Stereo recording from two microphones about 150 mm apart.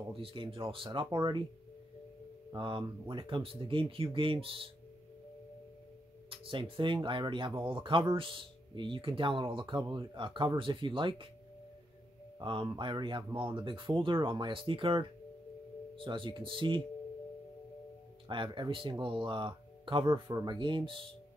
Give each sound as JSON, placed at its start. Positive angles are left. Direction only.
{"t": 0.1, "sound": "speech", "side_deg": -35}
{"t": 2.5, "sound": "speech", "side_deg": -30}
{"t": 6.3, "sound": "speech", "side_deg": -35}
{"t": 12.4, "sound": "speech", "side_deg": -35}
{"t": 18.3, "sound": "speech", "side_deg": -35}